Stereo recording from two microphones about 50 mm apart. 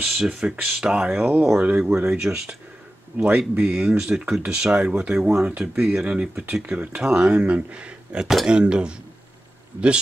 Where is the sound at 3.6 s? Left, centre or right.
Centre.